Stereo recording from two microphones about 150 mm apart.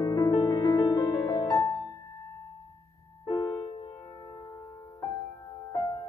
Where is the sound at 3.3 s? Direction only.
20° left (ahead or behind).